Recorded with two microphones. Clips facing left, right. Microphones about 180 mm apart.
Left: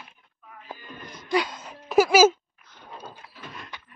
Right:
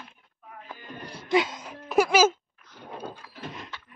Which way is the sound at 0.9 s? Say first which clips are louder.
Right 2 dB; 35° right (ahead or behind).